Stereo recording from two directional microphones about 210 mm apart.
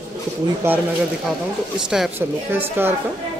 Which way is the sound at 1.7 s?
5° right (ahead or behind).